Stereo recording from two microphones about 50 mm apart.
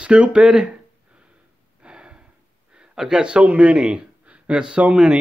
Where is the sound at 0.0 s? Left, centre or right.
Right.